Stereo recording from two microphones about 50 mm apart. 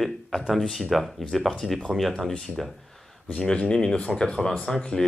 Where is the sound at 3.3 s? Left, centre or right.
Left.